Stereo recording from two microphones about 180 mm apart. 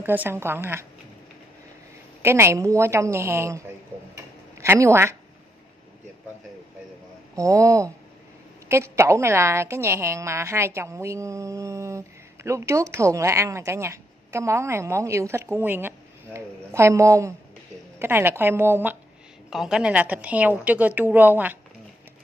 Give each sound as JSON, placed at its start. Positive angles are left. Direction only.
{"t": 0.0, "sound": "speech", "side_deg": -10}
{"t": 2.2, "sound": "a woman's voice", "side_deg": -15}
{"t": 7.3, "sound": "speech", "side_deg": -20}